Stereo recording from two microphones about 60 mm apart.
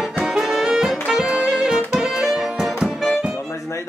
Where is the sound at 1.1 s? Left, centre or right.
Centre.